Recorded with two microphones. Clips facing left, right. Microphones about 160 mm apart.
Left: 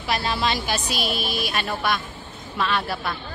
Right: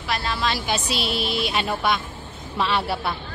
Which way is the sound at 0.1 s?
10° left (ahead or behind).